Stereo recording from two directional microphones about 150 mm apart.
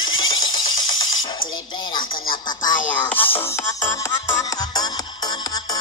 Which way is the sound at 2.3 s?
30° left (ahead or behind).